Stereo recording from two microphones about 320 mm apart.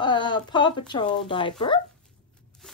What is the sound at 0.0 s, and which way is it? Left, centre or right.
Speech, centre.